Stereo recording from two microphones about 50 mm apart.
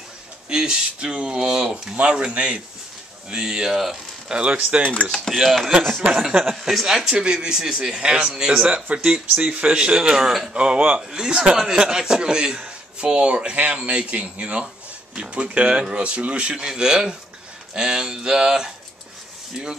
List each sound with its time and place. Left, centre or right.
0.5 s a man's voice: centre
4.4 s a man's voice: right
5.3 s a man's voice: centre
10.5 s a man's voice: right
11.0 s a man's voice: centre